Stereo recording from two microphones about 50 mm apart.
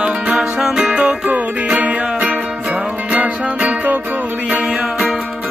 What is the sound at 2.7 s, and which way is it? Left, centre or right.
Music, centre.